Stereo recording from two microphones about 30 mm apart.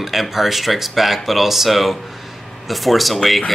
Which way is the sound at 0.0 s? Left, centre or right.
Centre.